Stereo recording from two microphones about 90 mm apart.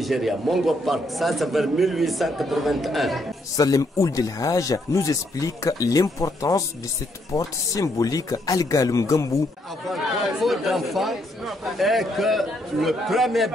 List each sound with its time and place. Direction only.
0.0 s a man's voice: centre (ahead or behind)
3.5 s speech: 40° left (ahead or behind)
10.4 s a man's voice: centre (ahead or behind)